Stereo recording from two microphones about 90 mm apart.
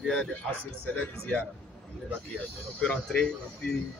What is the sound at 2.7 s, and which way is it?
Speech, 10° left (ahead or behind).